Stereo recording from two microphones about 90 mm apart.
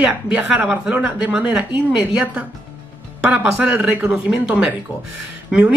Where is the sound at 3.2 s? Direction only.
15° right (ahead or behind).